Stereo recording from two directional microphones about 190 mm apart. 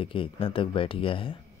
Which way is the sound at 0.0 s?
30° left (ahead or behind).